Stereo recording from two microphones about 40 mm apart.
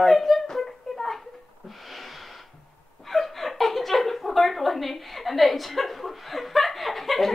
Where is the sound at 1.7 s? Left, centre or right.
Centre.